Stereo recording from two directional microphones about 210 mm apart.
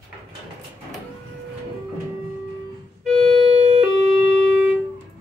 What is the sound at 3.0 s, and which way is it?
Music, centre (ahead or behind).